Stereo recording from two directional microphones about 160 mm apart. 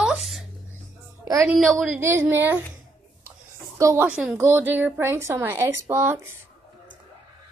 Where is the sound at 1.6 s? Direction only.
Centre (ahead or behind).